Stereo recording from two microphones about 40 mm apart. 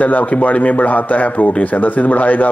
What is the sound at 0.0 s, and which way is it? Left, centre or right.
Speech, left.